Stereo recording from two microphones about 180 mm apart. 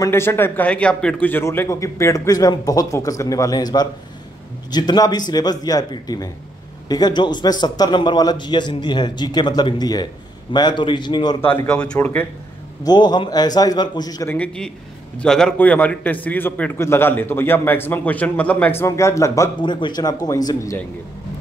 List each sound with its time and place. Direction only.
0.0 s a man's voice: 15° left (ahead or behind)
11.4 s a man's voice: 10° left (ahead or behind)
12.8 s a man's voice: 25° left (ahead or behind)
14.3 s a man's voice: 5° left (ahead or behind)